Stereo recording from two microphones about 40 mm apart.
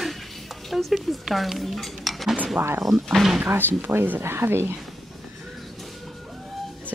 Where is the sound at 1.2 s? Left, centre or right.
Centre.